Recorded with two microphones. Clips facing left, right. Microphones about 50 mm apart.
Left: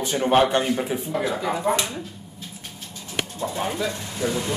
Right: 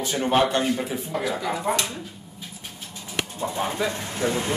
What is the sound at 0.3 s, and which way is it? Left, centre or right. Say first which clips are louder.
Speech: left 2 dB; left.